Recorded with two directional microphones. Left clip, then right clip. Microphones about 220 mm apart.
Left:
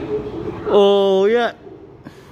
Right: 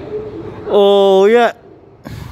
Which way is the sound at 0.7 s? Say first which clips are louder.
Right 4 dB; 10° right (ahead or behind).